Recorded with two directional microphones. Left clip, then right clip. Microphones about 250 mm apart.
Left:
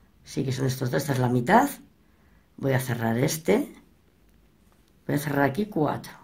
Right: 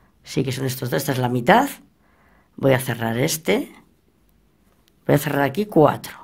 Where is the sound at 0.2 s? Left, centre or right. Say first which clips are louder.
Right 5 dB; right.